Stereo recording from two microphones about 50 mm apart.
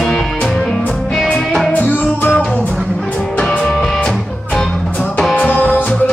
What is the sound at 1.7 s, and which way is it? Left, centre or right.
Music, left.